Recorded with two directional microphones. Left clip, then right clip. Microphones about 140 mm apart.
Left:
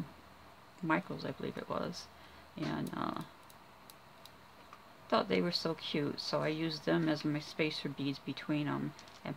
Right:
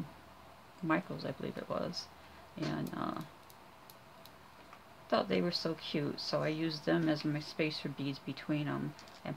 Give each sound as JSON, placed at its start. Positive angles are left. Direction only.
{"t": 0.8, "sound": "speech", "side_deg": 20}
{"t": 5.1, "sound": "speech", "side_deg": 20}